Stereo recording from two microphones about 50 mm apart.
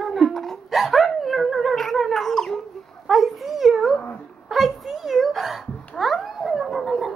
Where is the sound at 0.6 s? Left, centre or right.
Centre.